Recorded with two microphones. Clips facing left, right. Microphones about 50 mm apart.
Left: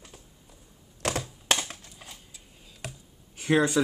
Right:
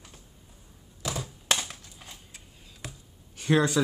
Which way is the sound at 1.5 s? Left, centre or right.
Left.